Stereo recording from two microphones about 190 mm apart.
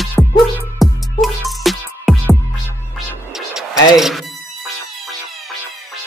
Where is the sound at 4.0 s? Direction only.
Centre (ahead or behind).